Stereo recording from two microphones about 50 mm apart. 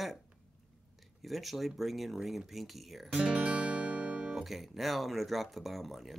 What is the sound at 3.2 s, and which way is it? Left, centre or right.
Music, right.